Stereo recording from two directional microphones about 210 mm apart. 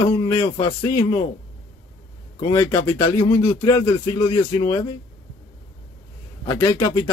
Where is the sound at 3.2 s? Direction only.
20° left (ahead or behind).